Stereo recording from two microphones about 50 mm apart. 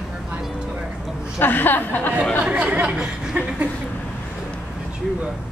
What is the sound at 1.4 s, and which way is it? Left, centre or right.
Speech, left.